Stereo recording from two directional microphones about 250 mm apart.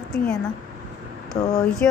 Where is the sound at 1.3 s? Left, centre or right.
Left.